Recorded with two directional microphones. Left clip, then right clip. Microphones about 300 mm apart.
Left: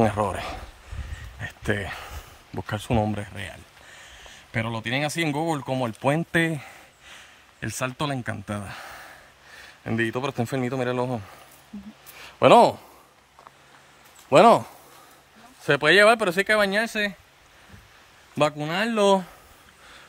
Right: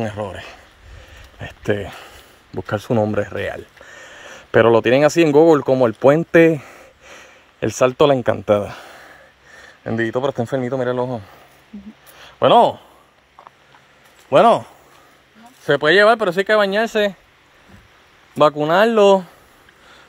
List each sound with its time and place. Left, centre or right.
0.0 s speech: centre
1.4 s a sound: centre
4.6 s speech: centre
14.3 s speech: centre
16.6 s speech: left
18.4 s speech: centre
18.9 s speech: centre